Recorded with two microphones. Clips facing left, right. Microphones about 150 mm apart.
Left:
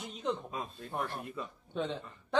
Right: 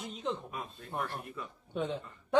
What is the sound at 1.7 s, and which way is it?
Speech, 10° right (ahead or behind).